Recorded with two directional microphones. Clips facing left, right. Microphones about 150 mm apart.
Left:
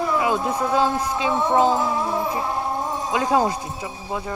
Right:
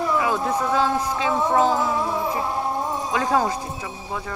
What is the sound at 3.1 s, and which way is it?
Speech, 15° left (ahead or behind).